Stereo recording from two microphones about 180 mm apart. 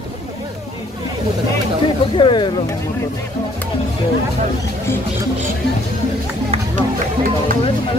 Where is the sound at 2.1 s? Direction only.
25° left (ahead or behind).